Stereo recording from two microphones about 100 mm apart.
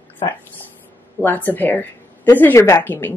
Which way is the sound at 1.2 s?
20° left (ahead or behind).